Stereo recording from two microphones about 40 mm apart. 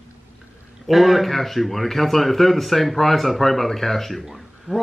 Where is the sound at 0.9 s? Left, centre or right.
Centre.